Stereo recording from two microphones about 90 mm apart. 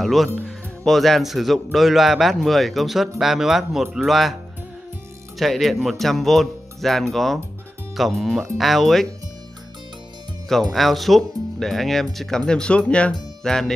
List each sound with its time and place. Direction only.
0.0 s speech: centre (ahead or behind)
5.4 s speech: centre (ahead or behind)
10.7 s speech: centre (ahead or behind)